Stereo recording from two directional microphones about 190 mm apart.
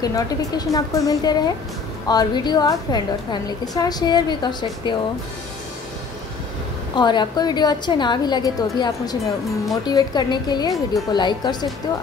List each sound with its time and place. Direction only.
0.0 s a woman's voice: 20° left (ahead or behind)
7.0 s a woman's voice: 25° left (ahead or behind)